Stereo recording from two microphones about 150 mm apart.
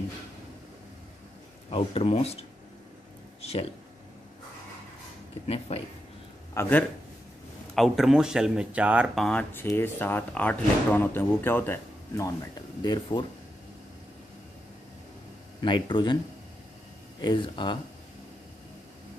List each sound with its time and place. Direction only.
1.7 s speech: 40° left (ahead or behind)
3.4 s a sound: 45° left (ahead or behind)
5.7 s speech: 40° left (ahead or behind)
6.5 s a man's voice: 15° left (ahead or behind)
7.7 s speech: centre (ahead or behind)
12.8 s speech: 30° left (ahead or behind)
15.6 s speech: 30° left (ahead or behind)
17.2 s speech: 30° left (ahead or behind)